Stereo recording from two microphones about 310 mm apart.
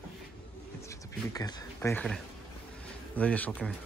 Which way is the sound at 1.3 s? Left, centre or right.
Centre.